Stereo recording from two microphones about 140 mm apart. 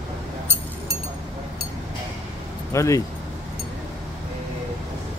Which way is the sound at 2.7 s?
20° left (ahead or behind).